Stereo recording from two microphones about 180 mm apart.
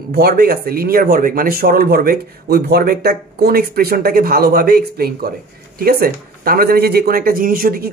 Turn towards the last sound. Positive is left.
turn(degrees=-55)  # may be behind; listen again after turning